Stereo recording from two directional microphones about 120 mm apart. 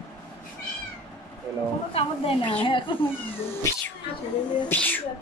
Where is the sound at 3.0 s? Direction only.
20° left (ahead or behind).